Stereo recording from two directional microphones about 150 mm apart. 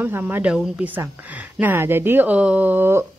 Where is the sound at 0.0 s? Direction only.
10° right (ahead or behind).